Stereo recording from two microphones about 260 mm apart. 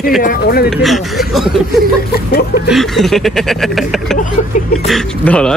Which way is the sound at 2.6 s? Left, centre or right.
Centre.